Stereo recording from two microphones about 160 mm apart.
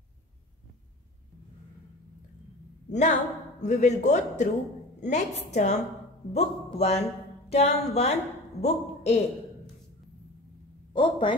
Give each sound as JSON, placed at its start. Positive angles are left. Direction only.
{"t": 2.9, "sound": "a woman's voice", "side_deg": 50}
{"t": 10.9, "sound": "a woman's voice", "side_deg": 30}